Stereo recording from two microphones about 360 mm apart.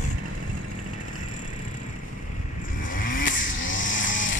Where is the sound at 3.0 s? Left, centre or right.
Left.